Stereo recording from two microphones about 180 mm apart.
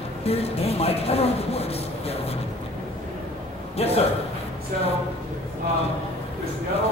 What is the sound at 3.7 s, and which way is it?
Speech, 35° left (ahead or behind).